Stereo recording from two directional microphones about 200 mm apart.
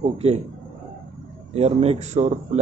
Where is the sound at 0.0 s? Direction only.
30° right (ahead or behind).